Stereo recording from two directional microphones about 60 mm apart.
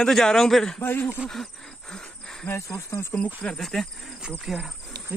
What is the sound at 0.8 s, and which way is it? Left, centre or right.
Speech, left.